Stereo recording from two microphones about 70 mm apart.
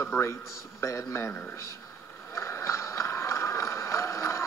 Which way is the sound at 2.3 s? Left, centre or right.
Left.